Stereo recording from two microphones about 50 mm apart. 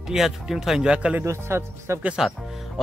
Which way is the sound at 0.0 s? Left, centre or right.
Centre.